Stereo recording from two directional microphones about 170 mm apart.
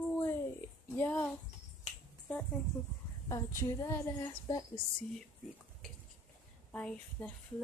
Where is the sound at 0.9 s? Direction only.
10° left (ahead or behind).